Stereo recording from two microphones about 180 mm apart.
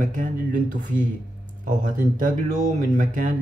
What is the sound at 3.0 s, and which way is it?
Speech, 45° right (ahead or behind).